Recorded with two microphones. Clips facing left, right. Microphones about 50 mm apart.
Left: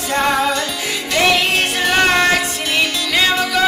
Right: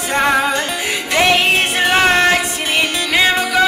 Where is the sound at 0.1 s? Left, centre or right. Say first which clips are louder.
Right 1 dB; right.